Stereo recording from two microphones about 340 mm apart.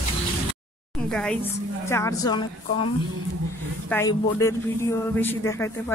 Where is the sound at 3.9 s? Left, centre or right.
Centre.